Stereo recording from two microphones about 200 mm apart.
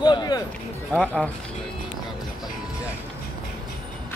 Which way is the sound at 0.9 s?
5° left (ahead or behind).